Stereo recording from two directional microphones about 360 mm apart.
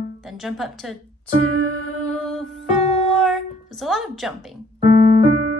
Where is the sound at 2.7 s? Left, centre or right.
Centre.